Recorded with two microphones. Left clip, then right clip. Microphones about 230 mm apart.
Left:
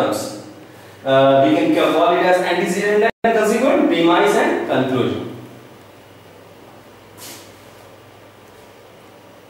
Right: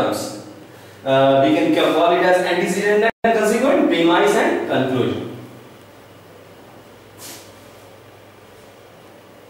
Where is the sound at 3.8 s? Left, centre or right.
Left.